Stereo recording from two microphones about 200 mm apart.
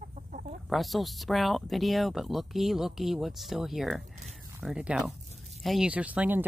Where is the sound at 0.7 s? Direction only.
Centre (ahead or behind).